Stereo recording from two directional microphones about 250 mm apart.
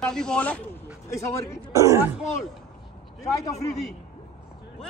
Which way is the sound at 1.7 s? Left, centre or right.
Centre.